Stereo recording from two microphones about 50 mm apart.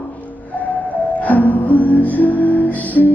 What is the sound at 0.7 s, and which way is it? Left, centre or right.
Music, left.